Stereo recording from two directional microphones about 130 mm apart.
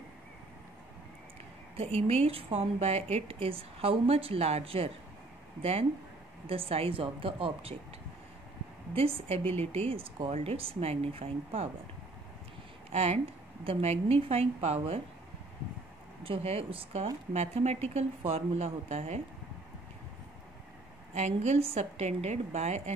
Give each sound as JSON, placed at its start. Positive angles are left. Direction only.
{"t": 1.8, "sound": "a woman's voice", "side_deg": -50}
{"t": 8.9, "sound": "a woman's voice", "side_deg": -45}
{"t": 12.9, "sound": "a woman's voice", "side_deg": -55}
{"t": 16.3, "sound": "a woman's voice", "side_deg": -45}
{"t": 21.1, "sound": "a woman's voice", "side_deg": -60}